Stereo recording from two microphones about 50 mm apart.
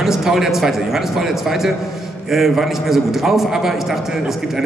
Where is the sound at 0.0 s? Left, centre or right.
Centre.